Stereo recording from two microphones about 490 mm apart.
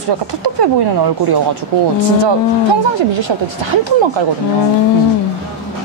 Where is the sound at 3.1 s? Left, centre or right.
Right.